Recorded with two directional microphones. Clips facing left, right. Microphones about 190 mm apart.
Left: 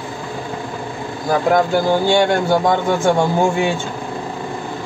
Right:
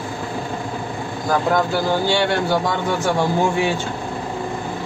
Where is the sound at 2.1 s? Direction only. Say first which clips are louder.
Left 4 dB; 45° left (ahead or behind).